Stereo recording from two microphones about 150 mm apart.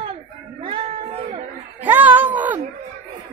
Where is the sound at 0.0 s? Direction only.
35° right (ahead or behind).